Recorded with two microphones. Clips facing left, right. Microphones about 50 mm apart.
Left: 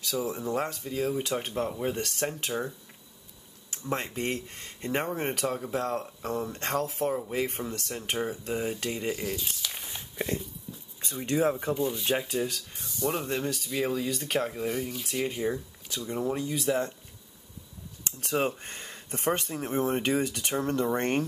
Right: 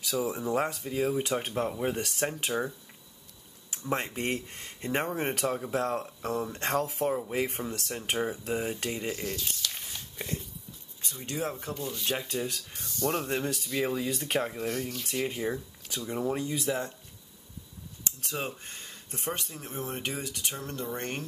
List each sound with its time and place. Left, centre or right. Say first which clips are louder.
0.1 s speech: right 1 dB; centre
3.7 s speech: even; centre
11.1 s speech: left 8 dB; left
11.6 s speech: left 6 dB; centre
14.7 s speech: left 1 dB; centre
18.0 s speech: left 7 dB; left